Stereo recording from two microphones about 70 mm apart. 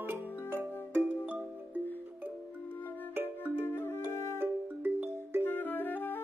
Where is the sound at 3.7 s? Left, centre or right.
Left.